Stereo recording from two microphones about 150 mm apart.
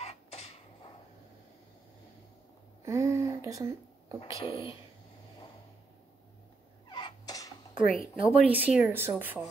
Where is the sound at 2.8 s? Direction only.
20° right (ahead or behind).